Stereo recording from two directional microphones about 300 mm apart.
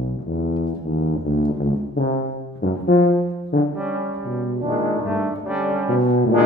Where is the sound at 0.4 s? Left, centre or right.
Left.